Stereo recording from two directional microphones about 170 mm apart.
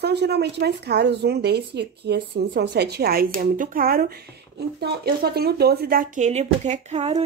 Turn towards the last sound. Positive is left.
turn(degrees=-40)  # may be behind; listen again after turning